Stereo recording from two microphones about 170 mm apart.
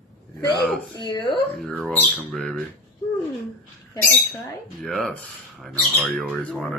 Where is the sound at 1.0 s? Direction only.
30° left (ahead or behind).